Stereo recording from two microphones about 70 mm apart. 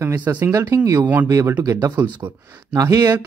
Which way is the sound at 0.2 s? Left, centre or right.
Right.